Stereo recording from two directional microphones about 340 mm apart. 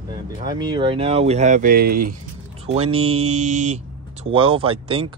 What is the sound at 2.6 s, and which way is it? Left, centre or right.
Mantra, centre.